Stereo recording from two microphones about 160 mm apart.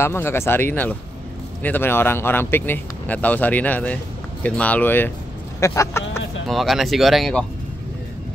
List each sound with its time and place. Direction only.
0.0 s speech: 15° left (ahead or behind)
6.4 s speech: centre (ahead or behind)